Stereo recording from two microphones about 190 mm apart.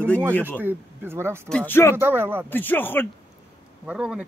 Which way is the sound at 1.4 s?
5° left (ahead or behind).